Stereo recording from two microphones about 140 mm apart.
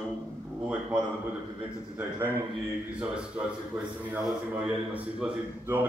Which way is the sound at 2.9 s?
10° right (ahead or behind).